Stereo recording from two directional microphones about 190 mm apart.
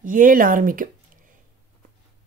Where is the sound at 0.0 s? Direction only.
45° right (ahead or behind).